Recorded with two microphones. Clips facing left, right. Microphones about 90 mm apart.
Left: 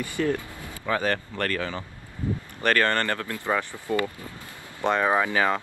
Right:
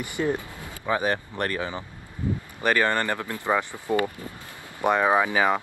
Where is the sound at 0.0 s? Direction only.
20° right (ahead or behind).